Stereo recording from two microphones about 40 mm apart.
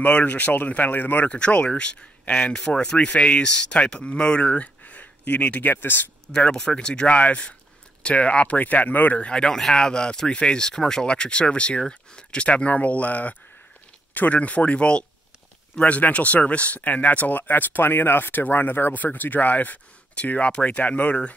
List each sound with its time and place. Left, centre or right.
0.0 s speech: left
1.3 s speech: left
5.8 s speech: left
6.5 s speech: centre; by 8.5 s left
8.5 s speech: left
9.3 s speech: left
11.1 s speech: left
18.9 s speech: left